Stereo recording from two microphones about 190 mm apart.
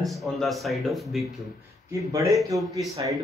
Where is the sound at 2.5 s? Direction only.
15° right (ahead or behind).